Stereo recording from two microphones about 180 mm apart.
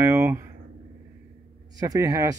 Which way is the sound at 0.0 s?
15° right (ahead or behind).